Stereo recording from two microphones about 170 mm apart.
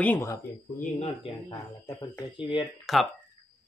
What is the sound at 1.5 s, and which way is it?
Speech, 20° left (ahead or behind).